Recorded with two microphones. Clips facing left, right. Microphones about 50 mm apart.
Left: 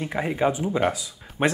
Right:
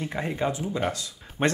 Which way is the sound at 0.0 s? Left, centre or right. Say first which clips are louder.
Left 4 dB; centre.